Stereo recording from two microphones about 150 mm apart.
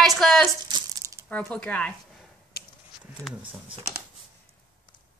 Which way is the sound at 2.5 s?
90° left.